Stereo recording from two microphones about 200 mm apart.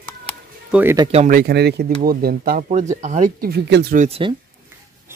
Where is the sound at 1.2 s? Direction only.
50° right (ahead or behind).